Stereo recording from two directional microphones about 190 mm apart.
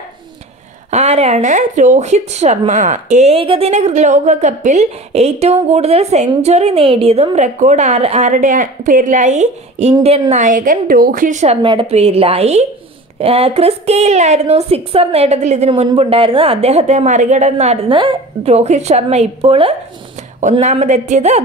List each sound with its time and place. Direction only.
0.8 s speech: 35° right (ahead or behind)
11.6 s speech: 30° right (ahead or behind)